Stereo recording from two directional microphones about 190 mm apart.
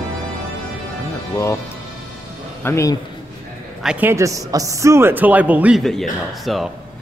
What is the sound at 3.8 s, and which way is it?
Speech, 10° right (ahead or behind).